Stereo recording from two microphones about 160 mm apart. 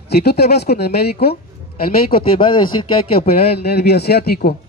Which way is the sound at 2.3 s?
30° left (ahead or behind).